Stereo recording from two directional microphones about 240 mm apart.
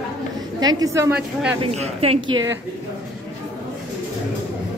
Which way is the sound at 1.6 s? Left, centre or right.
Right.